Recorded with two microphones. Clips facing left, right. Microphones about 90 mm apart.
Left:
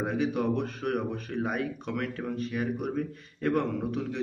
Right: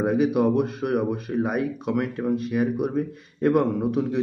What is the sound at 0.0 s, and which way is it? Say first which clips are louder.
Speech: right 8 dB; 15° right (ahead or behind).